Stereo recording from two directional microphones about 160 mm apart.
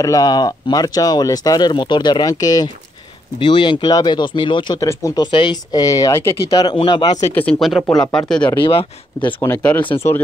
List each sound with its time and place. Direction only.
0.0 s speech: 20° left (ahead or behind)
7.3 s speech: 5° left (ahead or behind)
8.5 s speech: 35° left (ahead or behind)
9.9 s speech: 15° left (ahead or behind)